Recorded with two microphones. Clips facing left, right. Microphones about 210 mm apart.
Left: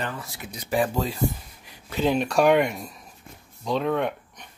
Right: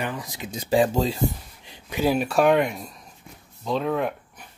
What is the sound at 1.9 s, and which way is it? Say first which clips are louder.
Speech: right 1 dB; 10° right (ahead or behind).